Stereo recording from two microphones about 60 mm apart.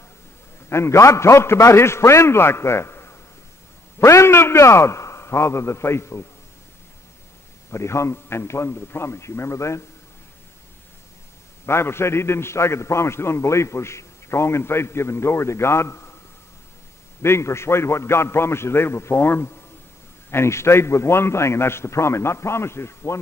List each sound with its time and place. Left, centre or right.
0.7 s a man's voice: left
7.7 s a man's voice: left
11.6 s a man's voice: left
17.2 s a man's voice: left